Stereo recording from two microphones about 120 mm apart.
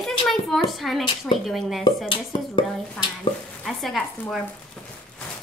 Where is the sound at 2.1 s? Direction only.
45° left (ahead or behind).